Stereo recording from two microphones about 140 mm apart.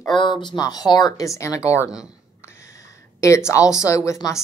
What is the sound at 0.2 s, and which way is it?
Speech, 35° left (ahead or behind).